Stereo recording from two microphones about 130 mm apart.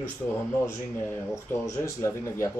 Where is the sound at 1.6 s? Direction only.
20° left (ahead or behind).